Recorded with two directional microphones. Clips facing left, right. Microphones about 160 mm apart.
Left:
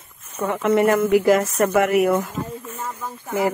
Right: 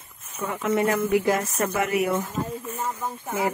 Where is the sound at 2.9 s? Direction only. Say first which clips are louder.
Even; 15° right (ahead or behind).